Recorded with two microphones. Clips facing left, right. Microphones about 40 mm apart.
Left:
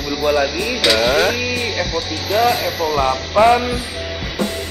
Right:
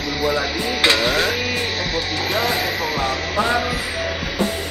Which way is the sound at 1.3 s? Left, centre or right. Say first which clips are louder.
Left 2 dB; right.